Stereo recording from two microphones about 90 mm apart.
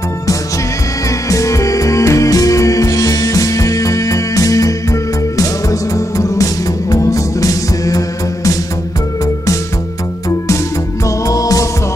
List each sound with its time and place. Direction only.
1.3 s music: 35° left (ahead or behind)
11.1 s music: 40° left (ahead or behind)